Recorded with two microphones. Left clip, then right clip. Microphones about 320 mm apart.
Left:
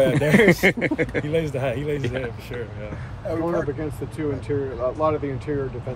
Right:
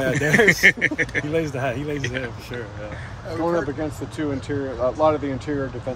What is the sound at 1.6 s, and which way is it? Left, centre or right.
Speech, centre.